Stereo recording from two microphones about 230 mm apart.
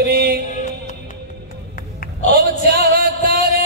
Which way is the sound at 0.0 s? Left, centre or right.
Right.